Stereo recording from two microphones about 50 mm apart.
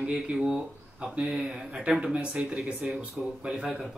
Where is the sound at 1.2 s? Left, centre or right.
Centre.